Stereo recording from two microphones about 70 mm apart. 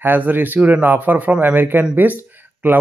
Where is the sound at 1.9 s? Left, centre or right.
Right.